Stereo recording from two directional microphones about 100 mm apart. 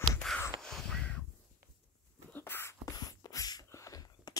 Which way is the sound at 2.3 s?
20° left (ahead or behind).